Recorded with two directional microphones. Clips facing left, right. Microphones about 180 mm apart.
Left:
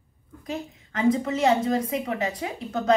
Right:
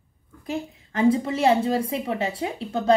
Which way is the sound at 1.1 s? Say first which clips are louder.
Right 2 dB; 30° right (ahead or behind).